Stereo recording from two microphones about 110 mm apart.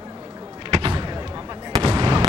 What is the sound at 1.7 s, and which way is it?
Fireworks, 40° right (ahead or behind).